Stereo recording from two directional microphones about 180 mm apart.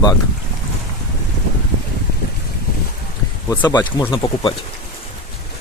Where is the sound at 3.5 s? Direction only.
20° left (ahead or behind).